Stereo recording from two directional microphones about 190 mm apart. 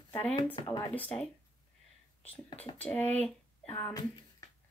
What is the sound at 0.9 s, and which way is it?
Speech, 10° left (ahead or behind).